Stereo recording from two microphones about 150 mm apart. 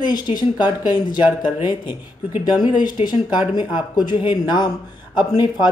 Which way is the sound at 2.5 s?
30° left (ahead or behind).